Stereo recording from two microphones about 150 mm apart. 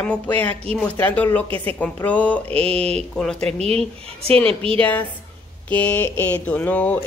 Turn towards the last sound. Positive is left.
turn(degrees=10)  # may be behind; listen again after turning